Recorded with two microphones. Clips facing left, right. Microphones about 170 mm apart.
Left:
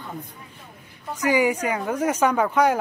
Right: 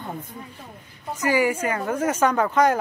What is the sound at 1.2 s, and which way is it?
Speech, 15° left (ahead or behind).